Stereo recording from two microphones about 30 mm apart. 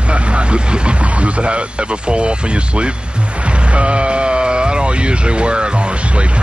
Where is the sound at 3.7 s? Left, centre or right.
Right.